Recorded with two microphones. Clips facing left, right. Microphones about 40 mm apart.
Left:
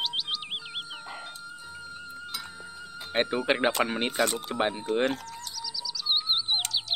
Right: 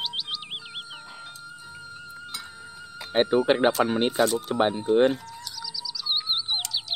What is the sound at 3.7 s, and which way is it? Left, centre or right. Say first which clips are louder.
Speech: right 4 dB; left.